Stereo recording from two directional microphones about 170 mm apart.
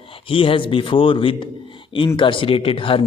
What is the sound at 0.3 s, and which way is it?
A man's voice, 30° left (ahead or behind).